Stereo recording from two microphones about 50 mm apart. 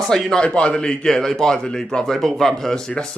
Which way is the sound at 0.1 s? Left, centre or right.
Centre.